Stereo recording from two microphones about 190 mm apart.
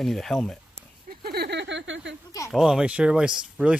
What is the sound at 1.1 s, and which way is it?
Speech, 55° right (ahead or behind).